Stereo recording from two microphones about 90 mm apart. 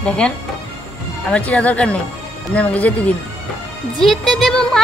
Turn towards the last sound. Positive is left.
turn(degrees=5)  # may be behind; listen again after turning